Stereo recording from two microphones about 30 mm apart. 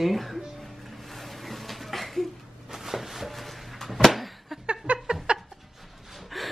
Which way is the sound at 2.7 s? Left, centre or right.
Centre.